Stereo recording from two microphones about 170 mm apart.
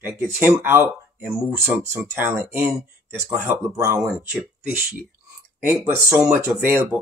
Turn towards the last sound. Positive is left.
turn(degrees=-10)  # may be behind; listen again after turning